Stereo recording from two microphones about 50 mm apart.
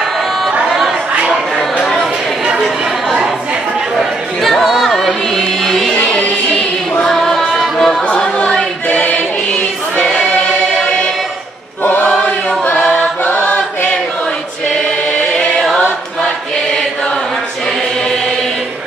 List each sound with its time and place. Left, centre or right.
0.7 s chatter: centre
1.8 s a sound: centre
4.0 s choir: centre
7.2 s music: centre
8.1 s a capella: centre
8.8 s music: left
13.2 s chant: left